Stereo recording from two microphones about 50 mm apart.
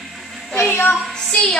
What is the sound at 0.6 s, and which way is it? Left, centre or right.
Child singing, left.